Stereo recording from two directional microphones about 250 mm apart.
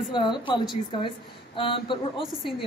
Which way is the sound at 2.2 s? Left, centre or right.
Centre.